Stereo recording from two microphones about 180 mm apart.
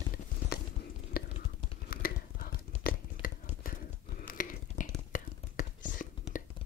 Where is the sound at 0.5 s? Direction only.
60° left (ahead or behind); by 6.0 s 45° left (ahead or behind).